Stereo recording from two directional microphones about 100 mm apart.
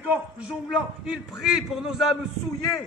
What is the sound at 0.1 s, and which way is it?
A man's voice, 10° right (ahead or behind).